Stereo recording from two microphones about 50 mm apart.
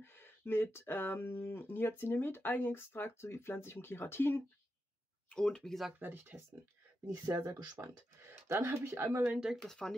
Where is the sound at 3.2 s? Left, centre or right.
Left.